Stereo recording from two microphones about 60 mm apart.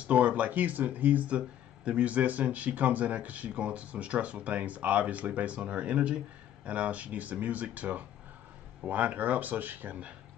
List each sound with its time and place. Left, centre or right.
0.0 s speech: right